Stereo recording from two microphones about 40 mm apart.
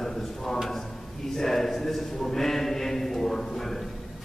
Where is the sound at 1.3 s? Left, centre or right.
Centre.